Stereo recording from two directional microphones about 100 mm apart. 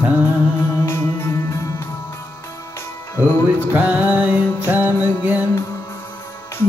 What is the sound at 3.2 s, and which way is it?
Music, 15° right (ahead or behind).